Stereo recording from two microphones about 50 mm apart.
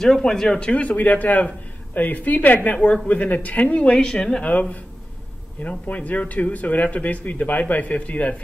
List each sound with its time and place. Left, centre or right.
0.0 s speech: centre; by 2.8 s left
2.8 s speech: left
4.5 s speech: left